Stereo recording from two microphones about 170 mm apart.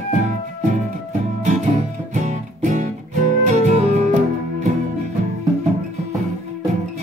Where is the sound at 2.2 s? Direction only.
45° right (ahead or behind).